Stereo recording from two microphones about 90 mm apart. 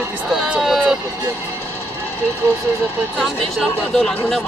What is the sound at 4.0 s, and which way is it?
Speech, 15° left (ahead or behind).